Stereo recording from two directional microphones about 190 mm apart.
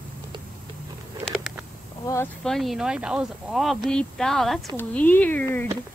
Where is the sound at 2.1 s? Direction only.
15° left (ahead or behind).